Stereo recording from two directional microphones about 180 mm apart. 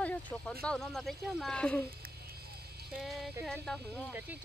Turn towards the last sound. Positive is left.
turn(degrees=5)  # may be behind; listen again after turning